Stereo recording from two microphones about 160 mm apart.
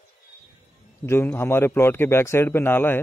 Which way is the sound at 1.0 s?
15° left (ahead or behind).